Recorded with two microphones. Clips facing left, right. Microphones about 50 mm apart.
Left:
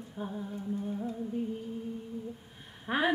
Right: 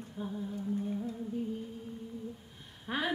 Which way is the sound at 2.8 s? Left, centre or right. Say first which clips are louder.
Left 5 dB; centre.